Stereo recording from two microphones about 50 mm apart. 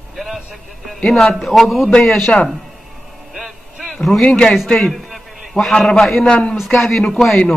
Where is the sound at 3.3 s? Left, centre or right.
Centre.